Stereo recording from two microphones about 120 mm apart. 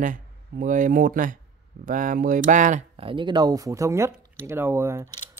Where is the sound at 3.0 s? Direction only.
45° right (ahead or behind).